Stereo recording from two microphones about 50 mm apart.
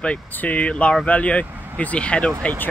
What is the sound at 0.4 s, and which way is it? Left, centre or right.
Speech, left.